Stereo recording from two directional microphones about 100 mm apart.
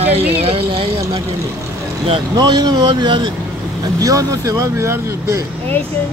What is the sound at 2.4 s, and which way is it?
Speech, 45° right (ahead or behind).